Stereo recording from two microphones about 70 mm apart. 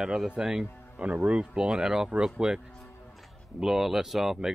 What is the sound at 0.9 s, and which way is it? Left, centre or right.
Speech, right.